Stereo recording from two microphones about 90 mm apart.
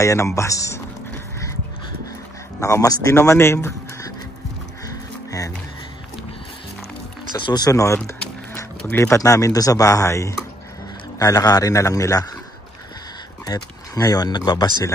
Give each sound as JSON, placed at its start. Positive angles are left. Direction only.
{"t": 0.0, "sound": "a man's voice", "side_deg": 35}
{"t": 2.6, "sound": "a man's voice", "side_deg": 40}
{"t": 4.8, "sound": "music", "side_deg": 40}
{"t": 7.3, "sound": "speech", "side_deg": 55}
{"t": 7.7, "sound": "a man's voice", "side_deg": 35}
{"t": 13.5, "sound": "speech", "side_deg": 45}